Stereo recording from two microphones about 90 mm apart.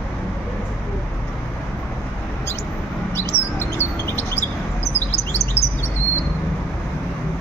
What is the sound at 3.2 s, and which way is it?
Bird, 25° left (ahead or behind).